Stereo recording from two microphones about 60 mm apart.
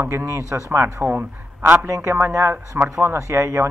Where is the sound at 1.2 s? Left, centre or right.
Right.